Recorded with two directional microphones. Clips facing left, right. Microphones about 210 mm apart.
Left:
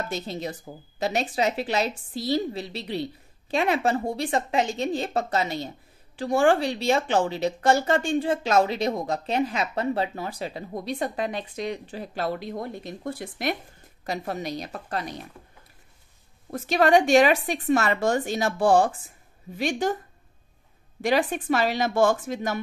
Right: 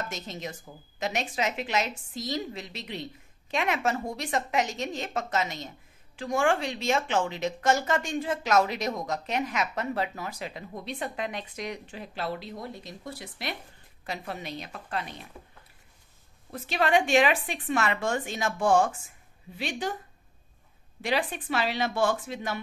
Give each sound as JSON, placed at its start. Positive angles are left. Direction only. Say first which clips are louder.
{"t": 0.1, "sound": "a woman's voice", "louder": "left 6 dB", "side_deg": 30}
{"t": 12.4, "sound": "a woman's voice", "louder": "left 6 dB", "side_deg": 50}
{"t": 16.4, "sound": "a woman's voice", "louder": "left 6 dB", "side_deg": 45}
{"t": 19.5, "sound": "speech", "louder": "left 7 dB", "side_deg": 45}
{"t": 21.0, "sound": "speech", "louder": "left 6 dB", "side_deg": 45}